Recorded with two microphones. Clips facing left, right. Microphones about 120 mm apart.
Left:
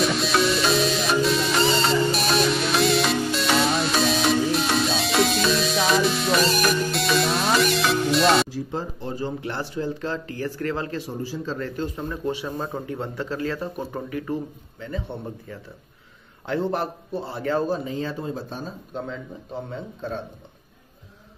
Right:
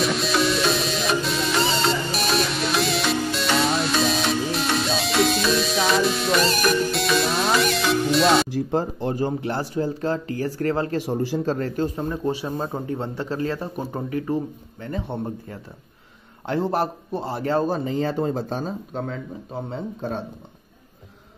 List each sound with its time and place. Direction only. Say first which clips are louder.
0.0 s music: even; centre (ahead or behind)
8.5 s speech: right 6 dB; 55° right (ahead or behind)
9.4 s speech: right 4 dB; 40° right (ahead or behind)
11.0 s speech: right 6 dB; 70° right (ahead or behind)
11.4 s speech: right 5 dB; 45° right (ahead or behind)
14.8 s speech: right 3 dB; 50° right (ahead or behind)
17.6 s speech: right 3 dB; 60° right (ahead or behind)
18.1 s speech: right 6 dB; 70° right (ahead or behind)
19.7 s speech: right 5 dB; 45° right (ahead or behind)